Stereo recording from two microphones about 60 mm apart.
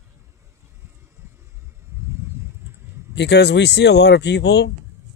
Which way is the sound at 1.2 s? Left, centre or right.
Right.